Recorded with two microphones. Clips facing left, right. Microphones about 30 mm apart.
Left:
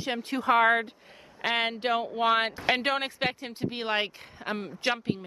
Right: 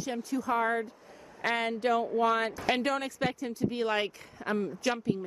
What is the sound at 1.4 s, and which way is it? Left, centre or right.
Speech, left.